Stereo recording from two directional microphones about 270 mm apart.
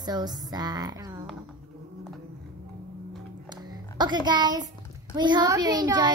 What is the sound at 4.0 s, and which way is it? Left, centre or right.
Child singing, centre.